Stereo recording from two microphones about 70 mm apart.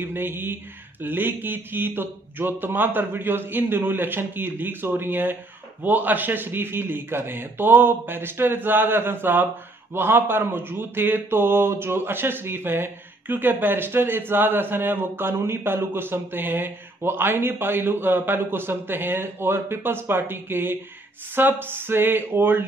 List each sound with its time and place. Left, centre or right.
0.0 s speech: right